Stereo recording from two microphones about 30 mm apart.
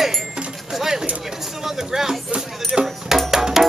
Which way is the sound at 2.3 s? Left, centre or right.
Right.